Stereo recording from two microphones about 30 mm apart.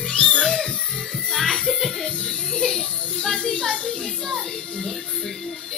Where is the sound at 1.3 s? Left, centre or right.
Centre.